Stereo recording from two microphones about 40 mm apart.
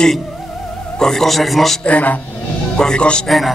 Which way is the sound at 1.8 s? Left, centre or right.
Left.